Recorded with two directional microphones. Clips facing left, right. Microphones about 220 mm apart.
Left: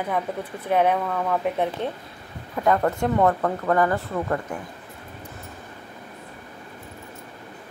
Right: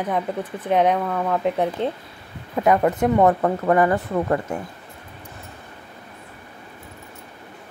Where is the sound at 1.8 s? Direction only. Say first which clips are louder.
Right 4 dB; 20° right (ahead or behind).